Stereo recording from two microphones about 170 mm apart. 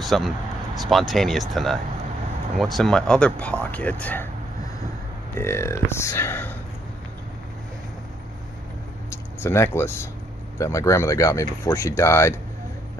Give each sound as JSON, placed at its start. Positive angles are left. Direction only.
{"t": 0.0, "sound": "speech", "side_deg": 0}
{"t": 5.3, "sound": "speech", "side_deg": 15}
{"t": 9.1, "sound": "a sound", "side_deg": 15}
{"t": 10.6, "sound": "speech", "side_deg": 20}